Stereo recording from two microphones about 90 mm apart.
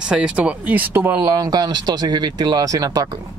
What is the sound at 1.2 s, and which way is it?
Speech, 50° right (ahead or behind).